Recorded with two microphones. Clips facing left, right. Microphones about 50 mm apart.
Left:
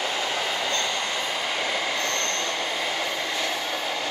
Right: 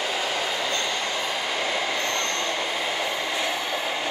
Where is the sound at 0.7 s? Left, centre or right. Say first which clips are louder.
Even; centre.